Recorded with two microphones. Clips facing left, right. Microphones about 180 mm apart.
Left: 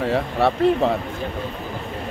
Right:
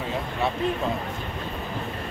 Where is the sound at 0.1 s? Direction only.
75° left (ahead or behind).